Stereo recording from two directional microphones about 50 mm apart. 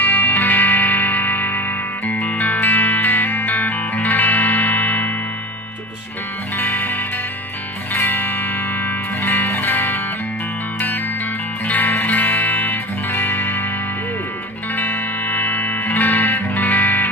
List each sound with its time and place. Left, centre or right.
0.0 s music: left
6.6 s music: left
7.9 s music: left
11.6 s music: left
14.8 s music: left